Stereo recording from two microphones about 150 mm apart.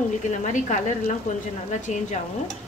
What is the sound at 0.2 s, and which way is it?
Speech, 55° left (ahead or behind).